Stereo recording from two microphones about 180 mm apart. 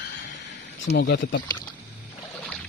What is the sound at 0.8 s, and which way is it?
Speech, 65° left (ahead or behind).